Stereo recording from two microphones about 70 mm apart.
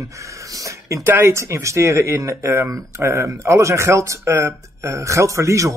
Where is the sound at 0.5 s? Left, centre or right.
Right.